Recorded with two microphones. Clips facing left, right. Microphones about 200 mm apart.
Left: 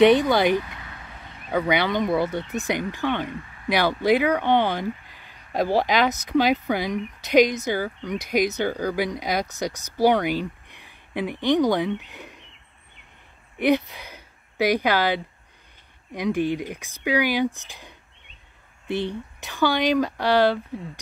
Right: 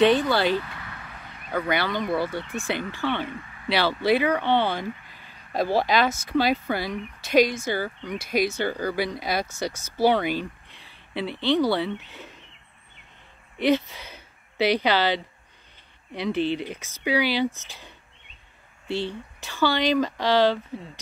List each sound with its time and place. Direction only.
0.0 s speech: 15° left (ahead or behind)
13.6 s speech: 15° left (ahead or behind)